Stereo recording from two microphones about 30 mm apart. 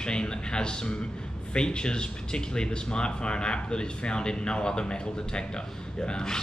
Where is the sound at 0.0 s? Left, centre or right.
Left.